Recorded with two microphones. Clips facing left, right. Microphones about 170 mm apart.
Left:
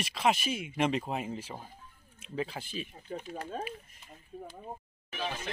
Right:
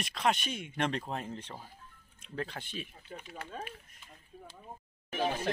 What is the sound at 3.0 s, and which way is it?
Speech, 40° left (ahead or behind).